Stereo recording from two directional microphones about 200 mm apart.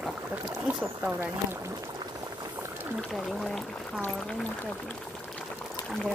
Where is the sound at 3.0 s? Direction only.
Centre (ahead or behind).